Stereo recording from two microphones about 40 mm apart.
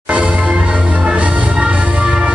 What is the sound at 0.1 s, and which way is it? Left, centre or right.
Music, right.